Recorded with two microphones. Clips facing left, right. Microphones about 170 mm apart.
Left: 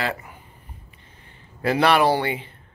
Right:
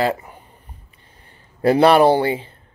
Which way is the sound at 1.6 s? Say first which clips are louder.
Right 6 dB; 30° right (ahead or behind).